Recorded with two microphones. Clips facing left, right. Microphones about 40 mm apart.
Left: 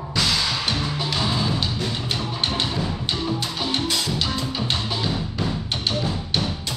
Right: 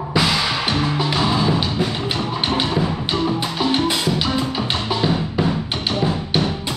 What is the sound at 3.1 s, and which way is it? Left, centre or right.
Music, right.